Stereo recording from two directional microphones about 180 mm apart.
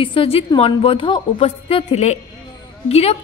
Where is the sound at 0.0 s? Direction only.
30° left (ahead or behind).